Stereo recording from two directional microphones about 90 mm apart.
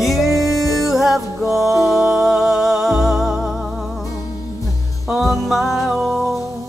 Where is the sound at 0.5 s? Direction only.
40° left (ahead or behind).